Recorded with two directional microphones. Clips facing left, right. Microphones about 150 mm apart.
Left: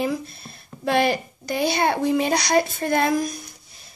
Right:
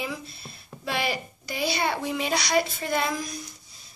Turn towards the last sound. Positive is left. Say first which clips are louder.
# left 7 dB
turn(degrees=50)  # may be behind; listen again after turning